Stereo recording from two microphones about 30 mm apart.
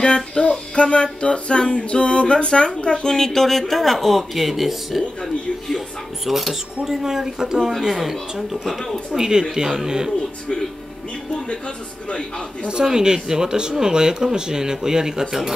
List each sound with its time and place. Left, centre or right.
0.0 s music: left
2.8 s speech: left
3.3 s speech: centre
6.8 s speech: centre
7.8 s speech: centre
8.6 s speech: centre
9.1 s speech: centre
11.4 s music: left
12.8 s speech: right